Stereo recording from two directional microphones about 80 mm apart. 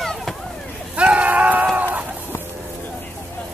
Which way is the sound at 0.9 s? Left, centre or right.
Centre.